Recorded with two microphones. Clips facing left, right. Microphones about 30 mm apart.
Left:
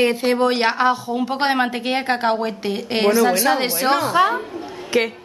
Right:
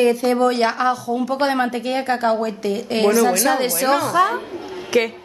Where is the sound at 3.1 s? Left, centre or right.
Centre.